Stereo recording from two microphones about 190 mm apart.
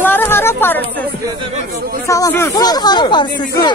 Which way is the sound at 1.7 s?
50° right (ahead or behind).